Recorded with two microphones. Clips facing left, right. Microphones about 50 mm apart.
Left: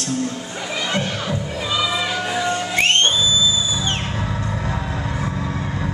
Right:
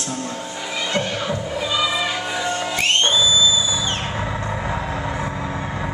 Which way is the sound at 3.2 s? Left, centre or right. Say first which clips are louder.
Right 1 dB; centre.